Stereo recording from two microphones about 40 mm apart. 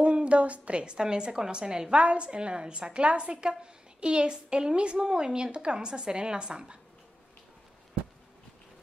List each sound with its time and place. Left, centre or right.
0.0 s a woman's voice: right